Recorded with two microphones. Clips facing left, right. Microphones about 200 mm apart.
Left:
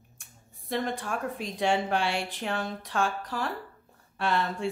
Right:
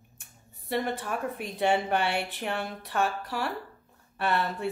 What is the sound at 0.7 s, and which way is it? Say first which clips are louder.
A woman's voice: right 1 dB; 5° right (ahead or behind).